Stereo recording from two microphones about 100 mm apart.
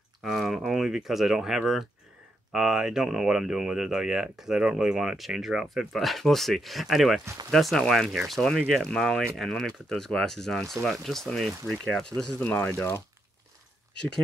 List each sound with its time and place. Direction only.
0.2 s speech: 5° right (ahead or behind); by 12.8 s 15° left (ahead or behind)